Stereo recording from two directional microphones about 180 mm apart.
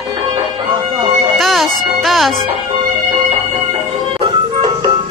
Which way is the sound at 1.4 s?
Centre (ahead or behind).